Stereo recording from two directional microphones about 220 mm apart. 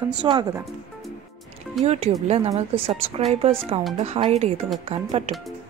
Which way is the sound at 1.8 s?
30° right (ahead or behind).